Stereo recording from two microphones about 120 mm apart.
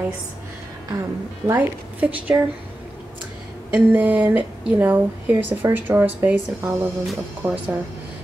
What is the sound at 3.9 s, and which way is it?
A woman's voice, 10° right (ahead or behind).